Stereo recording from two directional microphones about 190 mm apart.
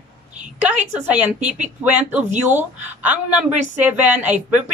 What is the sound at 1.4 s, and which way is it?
Speech, 40° right (ahead or behind).